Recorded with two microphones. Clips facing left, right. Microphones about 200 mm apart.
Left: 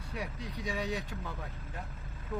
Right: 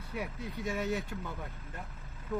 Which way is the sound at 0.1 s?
Centre (ahead or behind).